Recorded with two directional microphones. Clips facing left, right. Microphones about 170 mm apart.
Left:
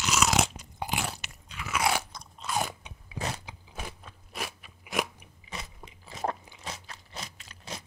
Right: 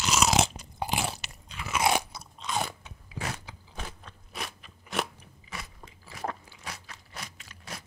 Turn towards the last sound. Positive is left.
turn(degrees=20)  # may be behind; listen again after turning